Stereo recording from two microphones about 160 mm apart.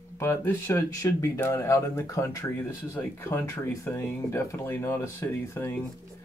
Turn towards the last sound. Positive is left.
turn(degrees=15)  # may be behind; listen again after turning